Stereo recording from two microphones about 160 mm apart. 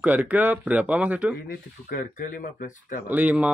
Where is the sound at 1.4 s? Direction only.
65° left (ahead or behind).